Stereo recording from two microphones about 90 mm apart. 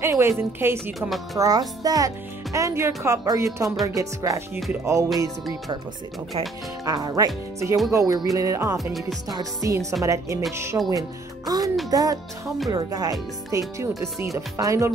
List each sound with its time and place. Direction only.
0.0 s a woman's voice: 30° right (ahead or behind)
0.9 s speech: centre (ahead or behind)
1.4 s a child's voice: 45° right (ahead or behind)
6.8 s a child's voice: 45° right (ahead or behind)
10.9 s a child's voice: 45° right (ahead or behind)